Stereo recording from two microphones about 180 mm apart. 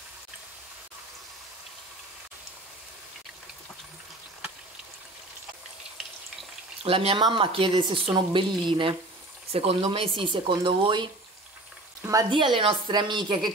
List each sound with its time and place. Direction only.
6.8 s speech: 35° right (ahead or behind)